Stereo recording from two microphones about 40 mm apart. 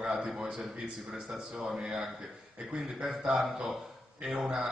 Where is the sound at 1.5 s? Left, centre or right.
Centre.